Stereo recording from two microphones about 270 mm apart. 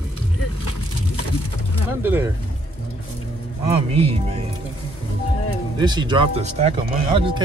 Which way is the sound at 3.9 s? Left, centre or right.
Right.